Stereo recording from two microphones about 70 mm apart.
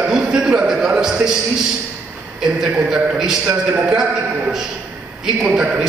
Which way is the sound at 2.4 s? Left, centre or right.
Centre.